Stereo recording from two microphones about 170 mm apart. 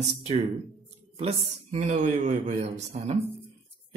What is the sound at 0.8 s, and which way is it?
Speech, 40° right (ahead or behind).